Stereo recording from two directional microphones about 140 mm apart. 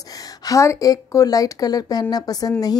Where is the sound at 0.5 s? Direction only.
25° left (ahead or behind).